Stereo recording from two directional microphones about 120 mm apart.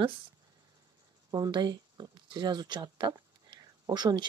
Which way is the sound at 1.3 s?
35° right (ahead or behind).